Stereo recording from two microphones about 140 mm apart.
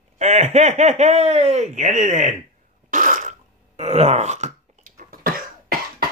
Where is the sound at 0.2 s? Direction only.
55° right (ahead or behind).